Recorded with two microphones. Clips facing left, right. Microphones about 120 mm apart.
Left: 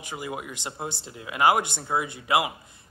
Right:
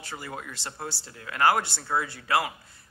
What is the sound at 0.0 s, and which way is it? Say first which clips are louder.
Speech: left 4 dB; 15° left (ahead or behind).